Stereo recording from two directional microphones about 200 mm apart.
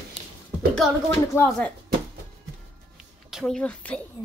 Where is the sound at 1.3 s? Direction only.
10° left (ahead or behind).